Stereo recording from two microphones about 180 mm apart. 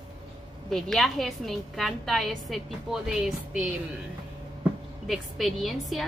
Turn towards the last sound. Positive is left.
turn(degrees=0)  # may be behind; listen again after turning